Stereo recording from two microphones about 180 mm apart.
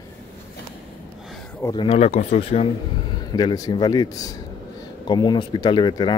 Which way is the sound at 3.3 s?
20° left (ahead or behind).